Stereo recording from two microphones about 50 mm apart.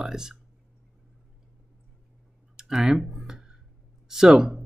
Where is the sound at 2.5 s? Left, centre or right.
Centre.